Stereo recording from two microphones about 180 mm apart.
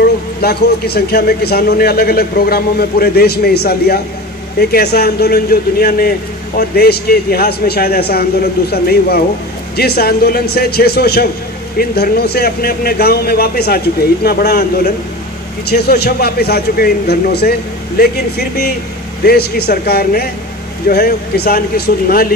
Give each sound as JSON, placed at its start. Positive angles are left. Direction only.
{"t": 0.4, "sound": "a man's voice", "side_deg": 65}
{"t": 19.2, "sound": "a man's voice", "side_deg": 60}